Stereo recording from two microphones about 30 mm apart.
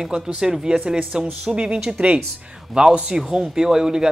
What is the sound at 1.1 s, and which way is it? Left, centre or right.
Speech, right.